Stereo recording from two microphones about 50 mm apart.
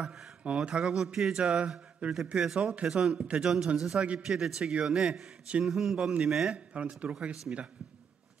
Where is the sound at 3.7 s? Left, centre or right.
Centre.